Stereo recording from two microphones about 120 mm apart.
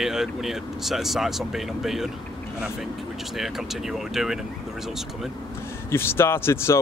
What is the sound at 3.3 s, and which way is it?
Speech, centre (ahead or behind).